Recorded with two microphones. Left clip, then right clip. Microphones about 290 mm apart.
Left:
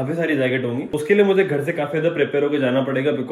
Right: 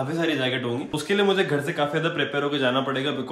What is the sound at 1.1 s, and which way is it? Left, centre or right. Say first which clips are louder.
Speech: left 5 dB; centre.